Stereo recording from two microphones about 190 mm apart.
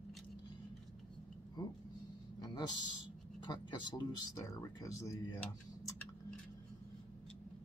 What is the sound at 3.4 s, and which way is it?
Speech, 20° left (ahead or behind).